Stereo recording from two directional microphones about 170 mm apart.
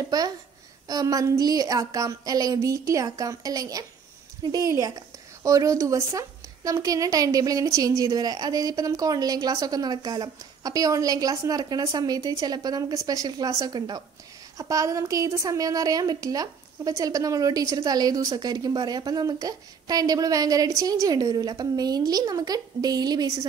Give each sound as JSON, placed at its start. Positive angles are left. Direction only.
{"t": 0.1, "sound": "a woman's voice", "side_deg": -20}